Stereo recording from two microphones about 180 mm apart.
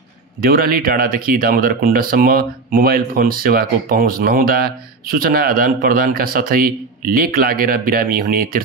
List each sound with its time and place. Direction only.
0.4 s speech: 55° right (ahead or behind)